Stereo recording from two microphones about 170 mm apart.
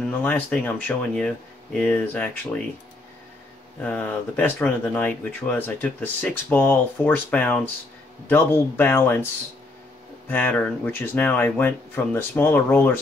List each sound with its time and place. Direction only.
0.0 s speech: 5° left (ahead or behind)
3.8 s speech: 10° left (ahead or behind)
10.2 s speech: 10° left (ahead or behind)